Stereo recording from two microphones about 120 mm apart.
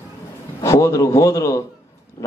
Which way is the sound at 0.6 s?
25° left (ahead or behind).